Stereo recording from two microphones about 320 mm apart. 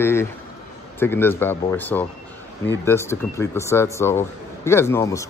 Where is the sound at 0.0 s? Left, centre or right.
Centre.